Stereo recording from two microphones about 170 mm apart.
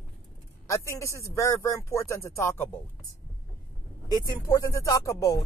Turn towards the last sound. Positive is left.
turn(degrees=20)  # may be behind; listen again after turning